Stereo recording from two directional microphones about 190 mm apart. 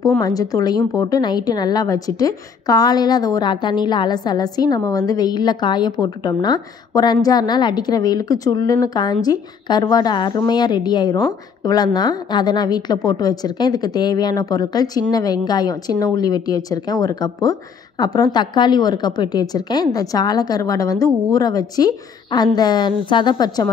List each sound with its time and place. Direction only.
0.2 s a woman's voice: 20° left (ahead or behind)